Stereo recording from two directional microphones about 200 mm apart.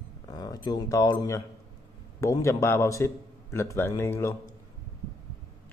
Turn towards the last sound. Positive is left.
turn(degrees=10)  # may be behind; listen again after turning